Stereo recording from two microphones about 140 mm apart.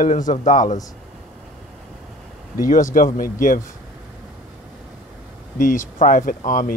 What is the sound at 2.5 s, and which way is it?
Speech, 75° left (ahead or behind).